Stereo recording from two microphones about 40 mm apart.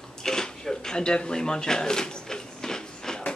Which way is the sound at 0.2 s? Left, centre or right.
Centre.